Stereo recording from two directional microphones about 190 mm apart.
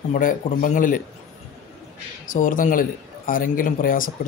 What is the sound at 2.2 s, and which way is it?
Speech, 45° left (ahead or behind).